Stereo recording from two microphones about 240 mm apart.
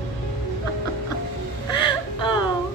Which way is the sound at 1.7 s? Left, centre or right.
Centre.